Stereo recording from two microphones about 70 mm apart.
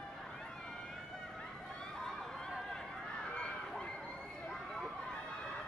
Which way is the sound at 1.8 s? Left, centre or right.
Centre.